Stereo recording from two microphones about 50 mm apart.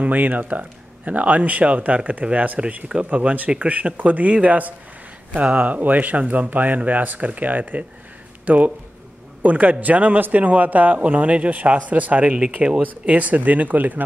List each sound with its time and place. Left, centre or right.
0.0 s a man's voice: right